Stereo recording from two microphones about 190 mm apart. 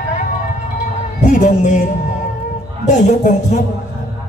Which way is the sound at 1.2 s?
40° left (ahead or behind).